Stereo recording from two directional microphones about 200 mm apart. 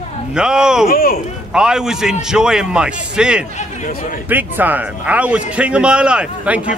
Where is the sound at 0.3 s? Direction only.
5° right (ahead or behind).